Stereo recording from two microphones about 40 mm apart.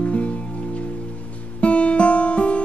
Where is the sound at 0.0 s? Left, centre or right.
Left.